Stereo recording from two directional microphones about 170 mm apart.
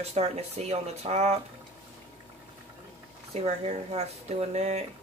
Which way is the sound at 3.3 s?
40° right (ahead or behind).